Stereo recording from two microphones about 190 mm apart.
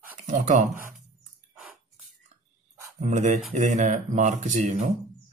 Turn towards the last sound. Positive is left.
turn(degrees=-35)  # may be behind; listen again after turning